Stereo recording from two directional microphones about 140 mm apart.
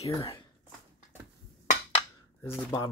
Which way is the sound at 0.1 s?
35° left (ahead or behind).